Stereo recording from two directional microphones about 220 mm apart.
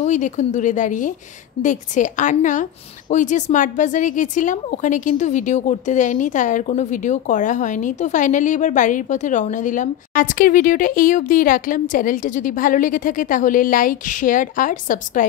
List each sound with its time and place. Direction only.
0.0 s a woman's voice: 35° left (ahead or behind)